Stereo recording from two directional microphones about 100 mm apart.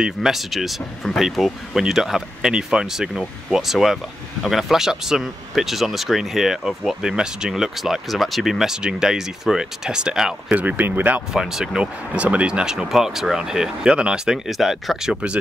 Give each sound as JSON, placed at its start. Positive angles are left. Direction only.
{"t": 0.0, "sound": "speech", "side_deg": 0}
{"t": 10.6, "sound": "speech", "side_deg": -15}
{"t": 11.3, "sound": "speech", "side_deg": -5}